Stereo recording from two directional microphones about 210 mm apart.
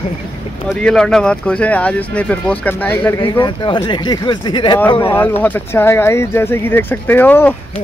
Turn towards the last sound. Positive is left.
turn(degrees=10)  # may be behind; listen again after turning